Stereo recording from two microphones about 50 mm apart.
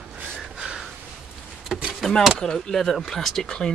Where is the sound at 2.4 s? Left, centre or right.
Centre.